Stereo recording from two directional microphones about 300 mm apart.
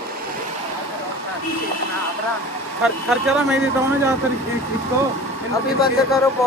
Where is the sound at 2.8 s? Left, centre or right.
Centre.